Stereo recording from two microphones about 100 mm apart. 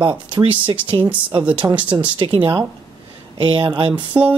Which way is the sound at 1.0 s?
15° right (ahead or behind).